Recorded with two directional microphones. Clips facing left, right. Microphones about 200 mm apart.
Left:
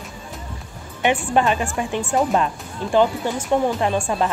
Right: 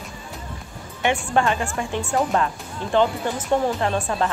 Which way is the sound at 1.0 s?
20° left (ahead or behind).